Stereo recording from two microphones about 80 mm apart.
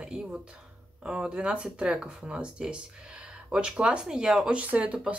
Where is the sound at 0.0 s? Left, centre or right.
Centre.